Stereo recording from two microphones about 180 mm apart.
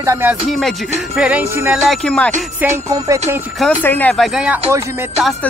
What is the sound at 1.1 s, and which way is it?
Music, 10° right (ahead or behind).